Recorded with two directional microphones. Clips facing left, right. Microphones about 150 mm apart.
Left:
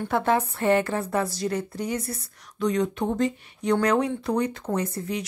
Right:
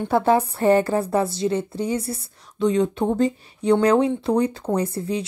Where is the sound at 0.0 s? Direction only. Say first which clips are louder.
Right 5 dB; 30° right (ahead or behind).